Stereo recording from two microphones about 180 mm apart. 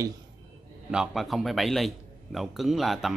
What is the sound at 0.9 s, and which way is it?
A man's voice, centre (ahead or behind).